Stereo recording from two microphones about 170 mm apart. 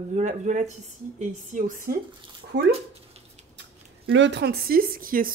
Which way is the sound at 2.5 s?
90° right.